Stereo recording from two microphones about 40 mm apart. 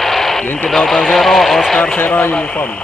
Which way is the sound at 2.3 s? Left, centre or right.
Left.